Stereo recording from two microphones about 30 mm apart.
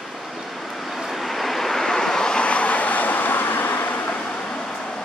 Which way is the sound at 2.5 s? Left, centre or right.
Left.